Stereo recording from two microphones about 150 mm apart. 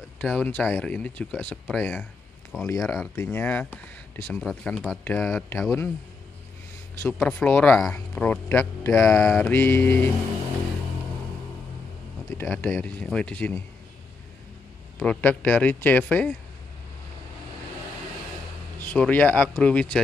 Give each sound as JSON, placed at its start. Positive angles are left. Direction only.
{"t": 0.2, "sound": "speech", "side_deg": 10}
{"t": 2.6, "sound": "speech", "side_deg": 15}
{"t": 5.0, "sound": "speech", "side_deg": 15}
{"t": 7.0, "sound": "speech", "side_deg": 15}
{"t": 12.3, "sound": "speech", "side_deg": 15}
{"t": 15.0, "sound": "speech", "side_deg": 10}
{"t": 18.8, "sound": "speech", "side_deg": 10}